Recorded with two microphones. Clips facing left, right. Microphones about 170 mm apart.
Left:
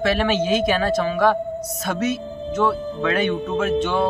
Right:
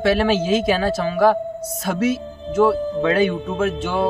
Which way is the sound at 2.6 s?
30° right (ahead or behind).